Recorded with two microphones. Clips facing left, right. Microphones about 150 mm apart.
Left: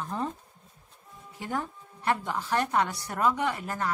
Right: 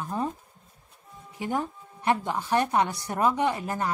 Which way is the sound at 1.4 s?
15° right (ahead or behind).